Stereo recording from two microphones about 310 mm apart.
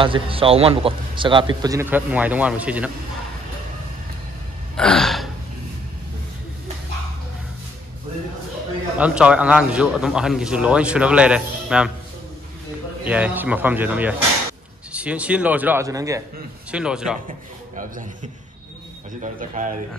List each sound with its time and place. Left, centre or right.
0.0 s a man's voice: centre
4.7 s gasp: centre
8.9 s a man's voice: centre
13.0 s a man's voice: centre
17.7 s a man's voice: right